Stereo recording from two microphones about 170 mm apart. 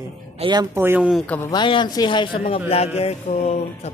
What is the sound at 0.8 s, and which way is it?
Speech, 10° right (ahead or behind).